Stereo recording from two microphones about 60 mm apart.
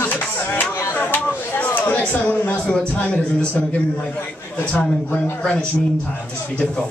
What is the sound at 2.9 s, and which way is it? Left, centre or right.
Speech, left.